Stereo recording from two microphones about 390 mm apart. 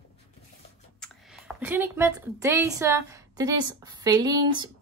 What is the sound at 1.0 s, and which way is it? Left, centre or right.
Speech, centre.